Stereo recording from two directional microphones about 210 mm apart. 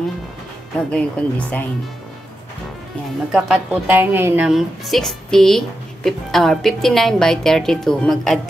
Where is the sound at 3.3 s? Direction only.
5° right (ahead or behind).